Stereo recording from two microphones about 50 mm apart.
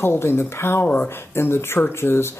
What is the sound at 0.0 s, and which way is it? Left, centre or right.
Speech, left.